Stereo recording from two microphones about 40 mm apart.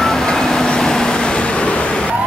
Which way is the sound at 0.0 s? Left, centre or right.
Centre.